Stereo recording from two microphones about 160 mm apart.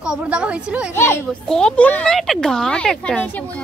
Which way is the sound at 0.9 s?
15° left (ahead or behind).